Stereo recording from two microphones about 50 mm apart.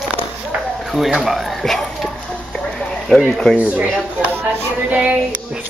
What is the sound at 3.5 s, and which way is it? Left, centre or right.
Speech, right.